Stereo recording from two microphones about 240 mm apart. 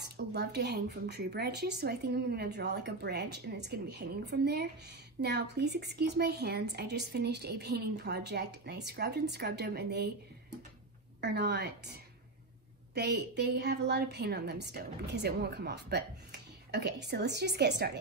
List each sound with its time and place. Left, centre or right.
0.0 s a woman's voice: right
11.1 s a woman's voice: right